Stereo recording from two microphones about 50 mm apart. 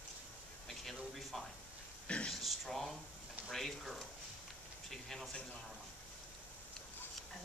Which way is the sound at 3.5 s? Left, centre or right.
Centre.